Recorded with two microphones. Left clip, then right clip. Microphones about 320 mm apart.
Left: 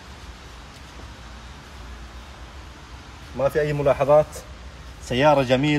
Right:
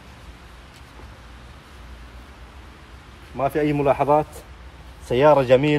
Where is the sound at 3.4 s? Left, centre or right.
Centre.